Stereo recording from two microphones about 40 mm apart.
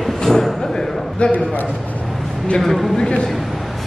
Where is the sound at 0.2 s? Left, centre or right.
Centre.